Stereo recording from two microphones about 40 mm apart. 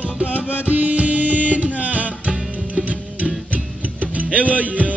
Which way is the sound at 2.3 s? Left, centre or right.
Right.